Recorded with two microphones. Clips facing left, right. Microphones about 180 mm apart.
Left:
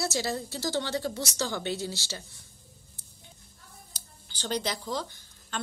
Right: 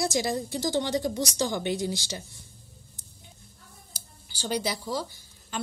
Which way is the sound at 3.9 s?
10° right (ahead or behind).